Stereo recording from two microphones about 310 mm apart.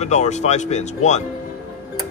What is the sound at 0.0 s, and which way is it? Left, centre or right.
Speech, left.